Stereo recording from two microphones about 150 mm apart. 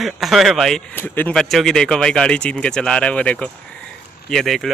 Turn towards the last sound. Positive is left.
turn(degrees=0)  # may be behind; listen again after turning